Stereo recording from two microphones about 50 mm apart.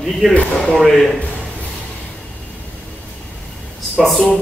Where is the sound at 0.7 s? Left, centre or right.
Centre.